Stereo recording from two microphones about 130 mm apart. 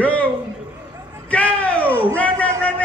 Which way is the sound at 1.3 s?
10° left (ahead or behind).